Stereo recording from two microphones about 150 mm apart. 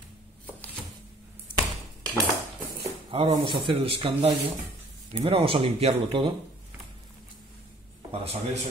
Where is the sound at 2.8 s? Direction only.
40° right (ahead or behind).